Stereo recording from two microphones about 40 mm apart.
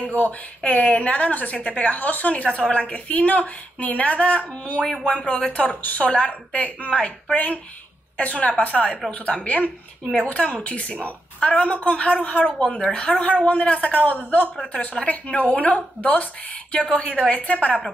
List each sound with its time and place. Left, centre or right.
0.0 s a woman's voice: left
12.7 s a woman's voice: left